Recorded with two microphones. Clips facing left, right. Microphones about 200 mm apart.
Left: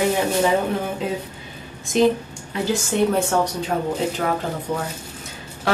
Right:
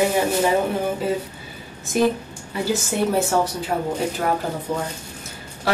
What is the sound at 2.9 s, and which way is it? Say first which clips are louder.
A woman's voice: left 1 dB; 10° right (ahead or behind).